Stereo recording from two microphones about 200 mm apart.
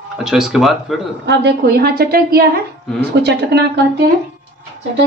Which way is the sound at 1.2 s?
55° right (ahead or behind).